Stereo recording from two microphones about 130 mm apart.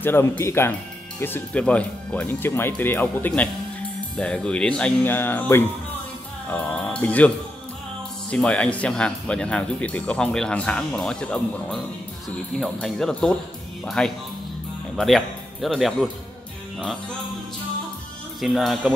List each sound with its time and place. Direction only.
0.0 s a man's voice: 20° left (ahead or behind); by 16.1 s centre (ahead or behind)
18.4 s a man's voice: centre (ahead or behind)